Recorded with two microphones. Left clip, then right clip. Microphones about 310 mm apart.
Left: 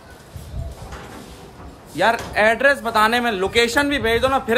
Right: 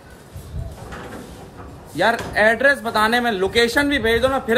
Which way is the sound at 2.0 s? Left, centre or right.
Centre.